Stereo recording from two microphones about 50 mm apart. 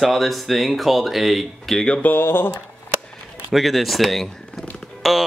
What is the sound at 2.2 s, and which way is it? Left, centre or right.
Speech, left.